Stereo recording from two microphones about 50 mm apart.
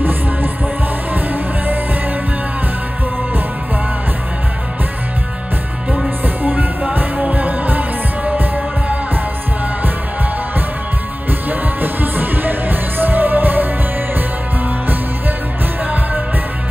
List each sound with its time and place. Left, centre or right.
1.1 s music: right
6.2 s music: right
11.2 s music: right